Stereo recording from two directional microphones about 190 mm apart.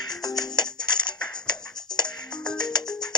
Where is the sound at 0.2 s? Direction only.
20° left (ahead or behind).